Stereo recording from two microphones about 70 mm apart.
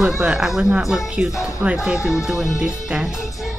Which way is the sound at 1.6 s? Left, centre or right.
Right.